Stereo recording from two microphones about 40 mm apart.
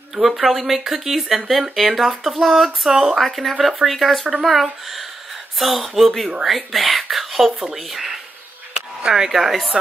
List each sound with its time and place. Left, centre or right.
0.1 s speech: centre
3.2 s speech: centre
9.0 s speech: centre
9.3 s speech: centre